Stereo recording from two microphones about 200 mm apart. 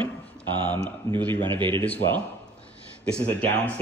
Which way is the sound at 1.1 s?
10° left (ahead or behind).